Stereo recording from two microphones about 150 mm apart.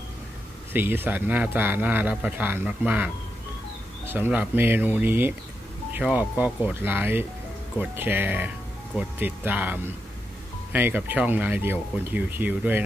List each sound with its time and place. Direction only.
0.7 s speech: 15° right (ahead or behind)